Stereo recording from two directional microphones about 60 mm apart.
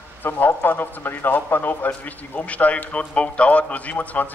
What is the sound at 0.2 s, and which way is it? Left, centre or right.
Speech, left.